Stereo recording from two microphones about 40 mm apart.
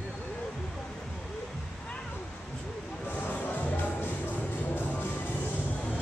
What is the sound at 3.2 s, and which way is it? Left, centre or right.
Music, left.